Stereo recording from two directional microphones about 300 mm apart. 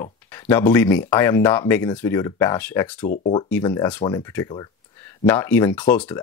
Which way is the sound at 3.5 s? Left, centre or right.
Centre.